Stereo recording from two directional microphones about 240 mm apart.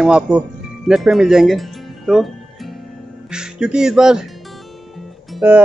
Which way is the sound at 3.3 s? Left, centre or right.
Centre.